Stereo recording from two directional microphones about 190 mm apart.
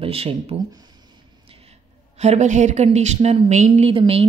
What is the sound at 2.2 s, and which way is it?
A woman's voice, 40° right (ahead or behind).